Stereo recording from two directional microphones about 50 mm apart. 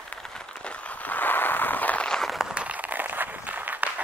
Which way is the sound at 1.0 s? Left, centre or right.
Left.